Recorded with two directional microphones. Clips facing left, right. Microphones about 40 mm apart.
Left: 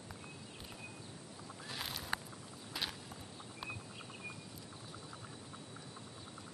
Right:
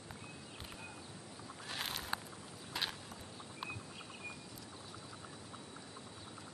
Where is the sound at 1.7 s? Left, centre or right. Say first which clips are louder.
Even; centre.